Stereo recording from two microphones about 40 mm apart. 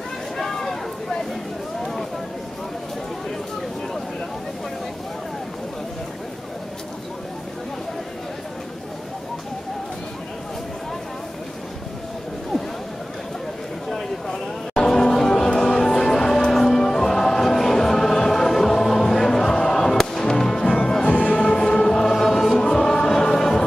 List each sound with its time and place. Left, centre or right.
0.4 s a sound: centre
14.9 s music: centre
21.1 s music: left
21.4 s choir: left
22.6 s music: centre